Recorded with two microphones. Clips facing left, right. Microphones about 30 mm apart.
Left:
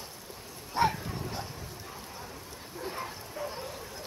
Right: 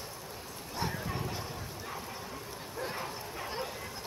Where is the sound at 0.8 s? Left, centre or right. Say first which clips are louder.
Left 10 dB; left.